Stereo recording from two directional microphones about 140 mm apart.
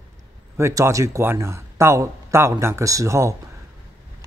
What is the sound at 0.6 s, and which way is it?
Speech, 20° right (ahead or behind).